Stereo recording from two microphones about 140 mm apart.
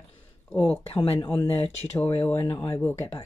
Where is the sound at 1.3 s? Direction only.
15° left (ahead or behind).